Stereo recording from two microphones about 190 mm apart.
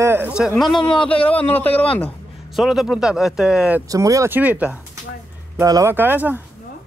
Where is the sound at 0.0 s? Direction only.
10° right (ahead or behind).